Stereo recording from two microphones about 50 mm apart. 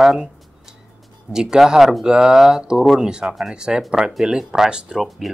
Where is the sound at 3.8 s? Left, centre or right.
Centre.